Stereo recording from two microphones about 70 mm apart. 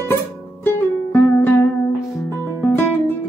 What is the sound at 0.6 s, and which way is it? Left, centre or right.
Music, left.